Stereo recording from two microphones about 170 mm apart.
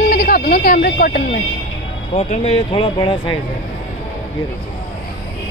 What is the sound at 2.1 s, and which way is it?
Speech, 40° left (ahead or behind).